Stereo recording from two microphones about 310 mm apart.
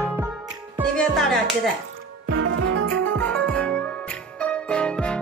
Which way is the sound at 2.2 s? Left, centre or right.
Right.